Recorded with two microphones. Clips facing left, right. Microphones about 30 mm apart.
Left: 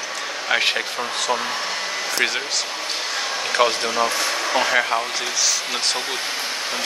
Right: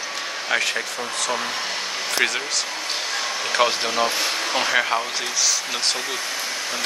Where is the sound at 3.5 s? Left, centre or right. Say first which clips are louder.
Left 1 dB; centre.